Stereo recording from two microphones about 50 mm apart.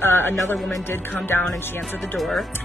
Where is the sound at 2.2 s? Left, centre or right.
Centre.